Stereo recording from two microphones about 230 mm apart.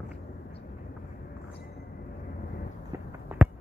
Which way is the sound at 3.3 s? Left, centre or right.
Centre.